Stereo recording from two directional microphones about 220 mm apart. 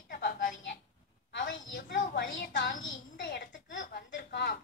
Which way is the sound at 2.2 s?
55° left (ahead or behind).